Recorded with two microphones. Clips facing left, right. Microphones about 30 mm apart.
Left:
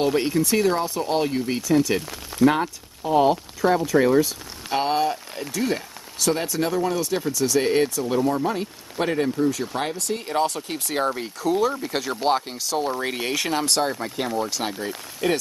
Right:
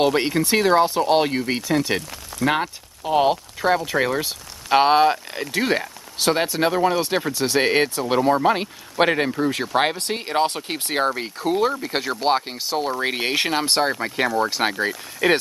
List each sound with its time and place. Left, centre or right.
0.0 s speech: right